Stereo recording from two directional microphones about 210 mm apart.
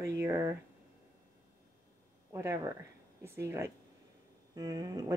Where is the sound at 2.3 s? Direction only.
15° right (ahead or behind).